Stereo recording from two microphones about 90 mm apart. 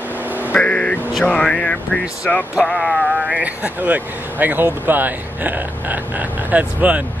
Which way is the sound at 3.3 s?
15° right (ahead or behind).